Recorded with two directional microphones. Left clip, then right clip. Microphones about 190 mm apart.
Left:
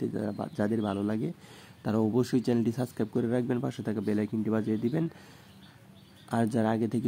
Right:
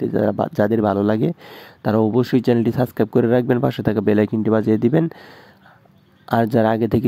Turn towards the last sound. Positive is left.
turn(degrees=-45)  # may be behind; listen again after turning